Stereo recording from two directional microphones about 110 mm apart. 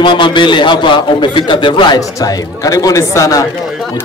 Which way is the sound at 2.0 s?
35° left (ahead or behind).